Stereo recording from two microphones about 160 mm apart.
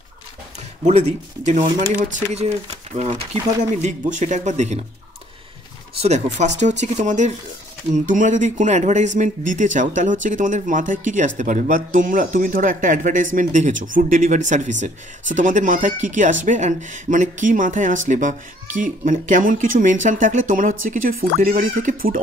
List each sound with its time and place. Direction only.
0.8 s speech: 45° right (ahead or behind)
3.1 s speech: 25° right (ahead or behind)
3.7 s speech: 50° right (ahead or behind)
5.9 s speech: 45° right (ahead or behind)